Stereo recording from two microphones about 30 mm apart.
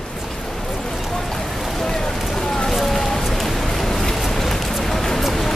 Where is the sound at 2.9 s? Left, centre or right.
Centre.